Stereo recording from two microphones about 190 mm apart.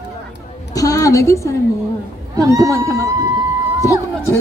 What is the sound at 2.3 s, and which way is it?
Speech, 15° right (ahead or behind).